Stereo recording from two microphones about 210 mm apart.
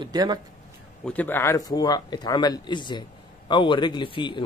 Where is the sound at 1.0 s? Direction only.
10° left (ahead or behind).